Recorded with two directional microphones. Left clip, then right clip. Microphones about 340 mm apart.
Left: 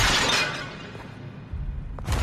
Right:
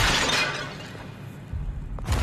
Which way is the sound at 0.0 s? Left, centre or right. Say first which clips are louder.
Left 1 dB; centre.